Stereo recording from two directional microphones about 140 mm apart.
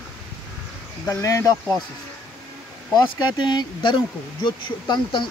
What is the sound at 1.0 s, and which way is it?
Speech, 25° left (ahead or behind).